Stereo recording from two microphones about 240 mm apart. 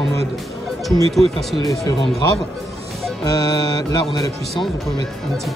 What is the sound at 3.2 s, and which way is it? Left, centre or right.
Music, centre.